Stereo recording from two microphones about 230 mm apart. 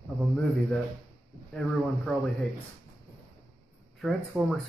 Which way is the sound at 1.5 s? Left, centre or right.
Centre.